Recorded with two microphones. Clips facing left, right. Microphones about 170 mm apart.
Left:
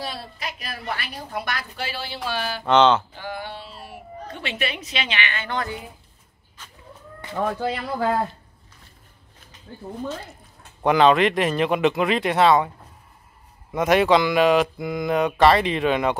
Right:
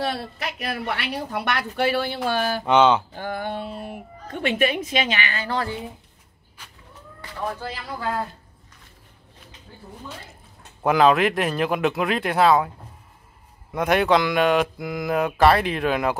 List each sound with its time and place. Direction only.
0.0 s a woman's voice: 60° right (ahead or behind)
2.6 s speech: 10° right (ahead or behind)
3.2 s a woman's voice: 50° right (ahead or behind); by 5.8 s 35° right (ahead or behind)
7.4 s speech: 75° left (ahead or behind)
10.8 s speech: 5° right (ahead or behind)
13.7 s speech: centre (ahead or behind)